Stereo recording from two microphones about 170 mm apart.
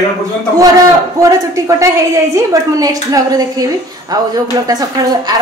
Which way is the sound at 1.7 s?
15° right (ahead or behind).